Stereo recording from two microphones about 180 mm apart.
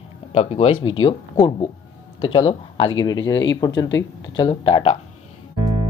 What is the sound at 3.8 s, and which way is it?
Speech, 90° left.